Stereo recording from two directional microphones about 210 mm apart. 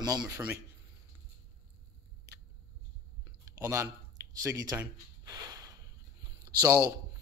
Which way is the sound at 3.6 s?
15° right (ahead or behind).